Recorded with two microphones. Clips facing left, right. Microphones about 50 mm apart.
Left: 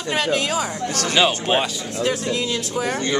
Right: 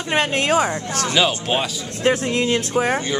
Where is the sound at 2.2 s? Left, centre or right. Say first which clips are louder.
Right 4 dB; right.